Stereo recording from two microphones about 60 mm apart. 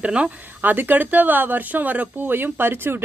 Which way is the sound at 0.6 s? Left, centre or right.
Right.